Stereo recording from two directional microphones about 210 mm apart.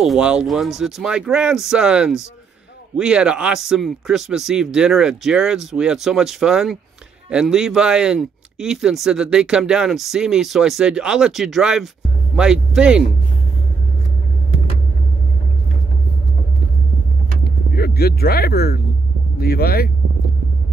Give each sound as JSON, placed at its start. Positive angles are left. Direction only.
{"t": 0.0, "sound": "speech", "side_deg": -5}
{"t": 17.7, "sound": "speech", "side_deg": 50}